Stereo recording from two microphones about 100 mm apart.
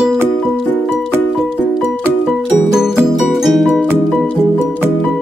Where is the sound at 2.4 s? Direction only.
5° right (ahead or behind).